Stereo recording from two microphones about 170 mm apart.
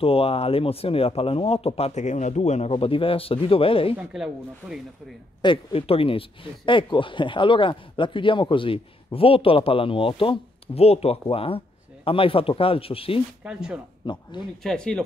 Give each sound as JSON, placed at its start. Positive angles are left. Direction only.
{"t": 0.0, "sound": "speech", "side_deg": 35}
{"t": 3.9, "sound": "speech", "side_deg": -5}
{"t": 5.4, "sound": "speech", "side_deg": 30}
{"t": 13.4, "sound": "speech", "side_deg": -5}
{"t": 14.0, "sound": "speech", "side_deg": 25}
{"t": 14.6, "sound": "speech", "side_deg": 5}